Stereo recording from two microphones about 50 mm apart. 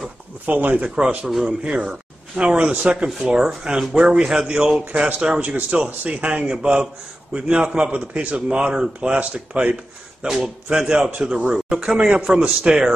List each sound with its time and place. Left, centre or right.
0.5 s a man's voice: right
1.2 s a man's voice: centre
1.6 s a man's voice: right
10.2 s a man's voice: centre
10.9 s a man's voice: right